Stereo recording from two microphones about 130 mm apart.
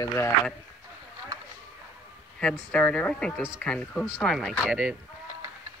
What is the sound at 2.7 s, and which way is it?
Speech, 10° left (ahead or behind).